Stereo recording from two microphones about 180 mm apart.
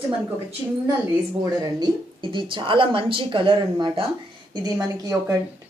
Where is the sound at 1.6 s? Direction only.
25° right (ahead or behind).